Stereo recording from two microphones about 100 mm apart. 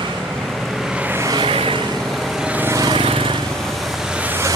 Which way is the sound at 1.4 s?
65° right (ahead or behind).